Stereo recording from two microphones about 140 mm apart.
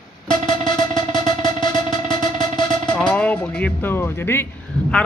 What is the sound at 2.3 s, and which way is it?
Music, 30° left (ahead or behind).